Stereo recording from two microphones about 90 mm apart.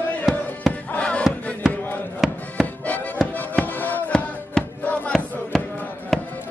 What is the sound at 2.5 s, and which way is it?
Music, 15° left (ahead or behind).